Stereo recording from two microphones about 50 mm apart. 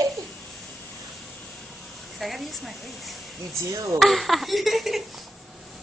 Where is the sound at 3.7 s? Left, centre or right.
Right.